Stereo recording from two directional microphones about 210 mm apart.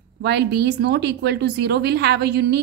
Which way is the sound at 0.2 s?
55° right (ahead or behind).